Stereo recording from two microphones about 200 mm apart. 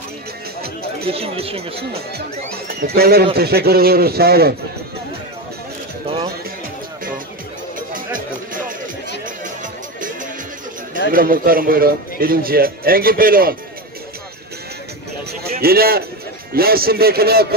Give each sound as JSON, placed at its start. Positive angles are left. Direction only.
{"t": 1.0, "sound": "speech", "side_deg": -30}
{"t": 1.8, "sound": "speech", "side_deg": -50}
{"t": 11.1, "sound": "speech", "side_deg": -45}
{"t": 15.6, "sound": "speech", "side_deg": -50}